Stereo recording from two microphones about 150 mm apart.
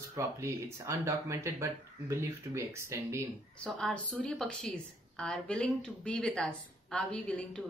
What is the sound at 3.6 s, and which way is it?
A woman's voice, 5° left (ahead or behind).